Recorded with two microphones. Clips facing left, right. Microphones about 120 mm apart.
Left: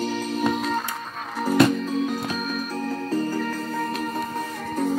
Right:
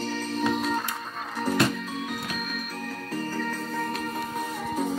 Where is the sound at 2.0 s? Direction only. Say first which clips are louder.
Left 6 dB; 30° left (ahead or behind).